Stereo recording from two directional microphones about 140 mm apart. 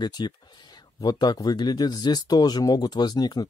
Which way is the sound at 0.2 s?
30° left (ahead or behind).